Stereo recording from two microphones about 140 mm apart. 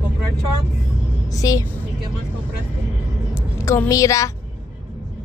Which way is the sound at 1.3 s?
25° left (ahead or behind).